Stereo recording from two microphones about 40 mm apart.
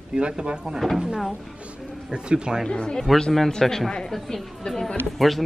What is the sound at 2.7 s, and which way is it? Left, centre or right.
Speech, left.